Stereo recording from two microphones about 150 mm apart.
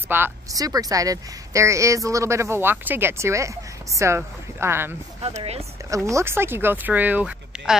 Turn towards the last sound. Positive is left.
turn(degrees=-5)  # may be behind; listen again after turning